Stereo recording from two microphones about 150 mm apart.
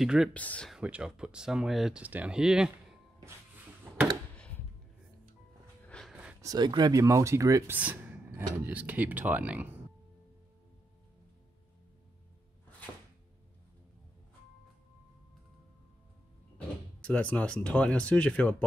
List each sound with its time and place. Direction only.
0.0 s speech: 5° right (ahead or behind)
0.3 s speech: 10° left (ahead or behind)
0.7 s speech: 5° right (ahead or behind)
5.9 s a sound: 5° left (ahead or behind)
6.4 s speech: 25° right (ahead or behind)
7.7 s a sound: 10° right (ahead or behind)
8.6 s speech: 10° right (ahead or behind)
16.5 s speech: 10° left (ahead or behind)